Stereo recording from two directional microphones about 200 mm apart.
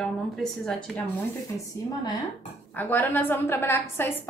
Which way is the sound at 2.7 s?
10° left (ahead or behind).